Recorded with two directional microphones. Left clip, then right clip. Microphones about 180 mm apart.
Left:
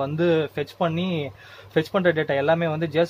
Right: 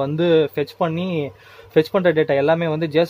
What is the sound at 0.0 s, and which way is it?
Speech, 40° right (ahead or behind).